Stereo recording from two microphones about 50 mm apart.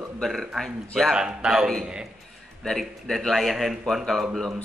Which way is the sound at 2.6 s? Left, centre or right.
Centre.